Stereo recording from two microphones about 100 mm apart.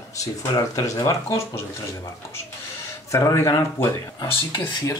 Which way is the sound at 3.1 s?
30° left (ahead or behind).